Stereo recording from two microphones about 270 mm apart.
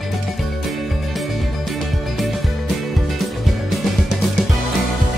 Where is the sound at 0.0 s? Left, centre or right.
Centre.